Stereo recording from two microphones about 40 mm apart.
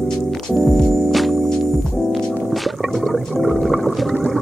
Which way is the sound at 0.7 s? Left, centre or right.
Centre.